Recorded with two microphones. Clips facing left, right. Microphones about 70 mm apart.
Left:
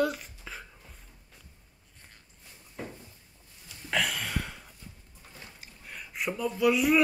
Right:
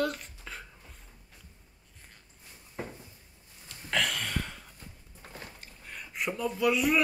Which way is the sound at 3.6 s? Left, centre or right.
Centre.